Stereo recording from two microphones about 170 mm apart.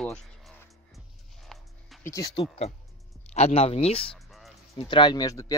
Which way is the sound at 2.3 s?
35° left (ahead or behind).